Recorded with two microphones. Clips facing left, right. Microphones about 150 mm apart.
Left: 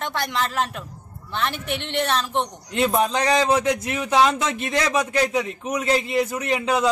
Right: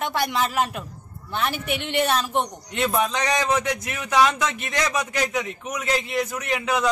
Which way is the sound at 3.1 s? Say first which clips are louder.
Left 3 dB; 30° left (ahead or behind).